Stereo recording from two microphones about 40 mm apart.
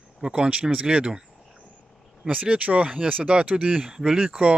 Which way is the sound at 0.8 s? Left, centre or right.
Right.